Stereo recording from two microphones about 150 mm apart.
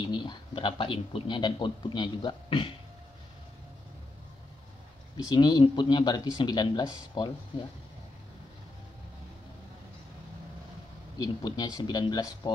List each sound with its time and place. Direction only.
0.1 s speech: 30° left (ahead or behind)
5.3 s speech: 30° left (ahead or behind)
11.1 s speech: 25° left (ahead or behind)